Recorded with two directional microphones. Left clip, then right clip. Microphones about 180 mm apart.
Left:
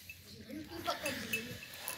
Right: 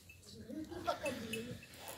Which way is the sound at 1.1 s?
15° right (ahead or behind).